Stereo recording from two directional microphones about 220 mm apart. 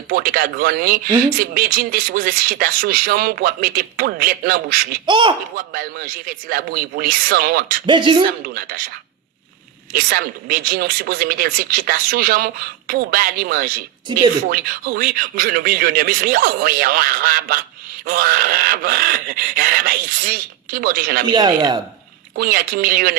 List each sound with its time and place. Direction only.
0.1 s a man's voice: 40° right (ahead or behind)
5.0 s speech: 20° right (ahead or behind)
5.7 s a man's voice: 40° right (ahead or behind)
7.8 s speech: 20° right (ahead or behind)
8.5 s speech: 40° right (ahead or behind)
9.9 s a man's voice: 40° right (ahead or behind)
21.3 s speech: 15° right (ahead or behind)
22.4 s a man's voice: 40° right (ahead or behind)